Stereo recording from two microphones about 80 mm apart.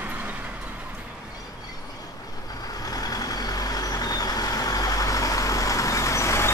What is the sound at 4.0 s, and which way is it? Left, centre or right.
Vehicle, left.